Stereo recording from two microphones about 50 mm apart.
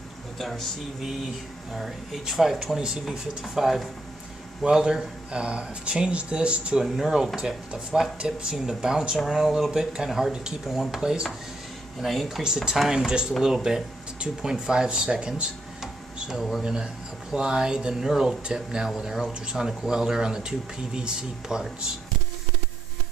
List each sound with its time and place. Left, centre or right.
0.4 s speech: centre
1.0 s speech: centre
3.1 s speech: centre; by 6.8 s right
6.8 s speech: centre
7.3 s speech: centre
15.8 s a sound: centre
16.6 s speech: centre